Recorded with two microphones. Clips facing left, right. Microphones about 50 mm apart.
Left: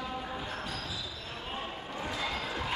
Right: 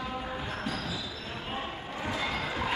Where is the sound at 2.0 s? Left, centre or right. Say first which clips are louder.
Right 3 dB; centre.